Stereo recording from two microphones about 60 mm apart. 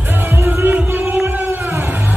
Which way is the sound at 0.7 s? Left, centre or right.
Right.